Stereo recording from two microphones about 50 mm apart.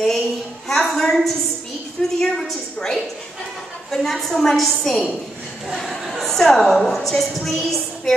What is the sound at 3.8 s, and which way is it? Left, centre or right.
A woman's voice, centre.